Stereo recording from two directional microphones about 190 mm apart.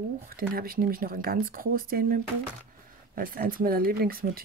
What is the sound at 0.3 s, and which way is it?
Speech, 50° right (ahead or behind).